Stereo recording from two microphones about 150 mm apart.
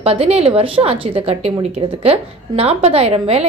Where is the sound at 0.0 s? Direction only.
40° right (ahead or behind).